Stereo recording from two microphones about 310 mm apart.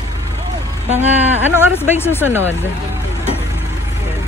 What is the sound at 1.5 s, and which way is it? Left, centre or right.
Speech, centre.